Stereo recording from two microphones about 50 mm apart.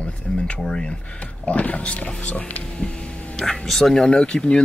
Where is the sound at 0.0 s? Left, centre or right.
Left.